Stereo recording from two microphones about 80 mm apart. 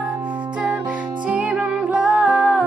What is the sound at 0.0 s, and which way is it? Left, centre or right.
Music, centre.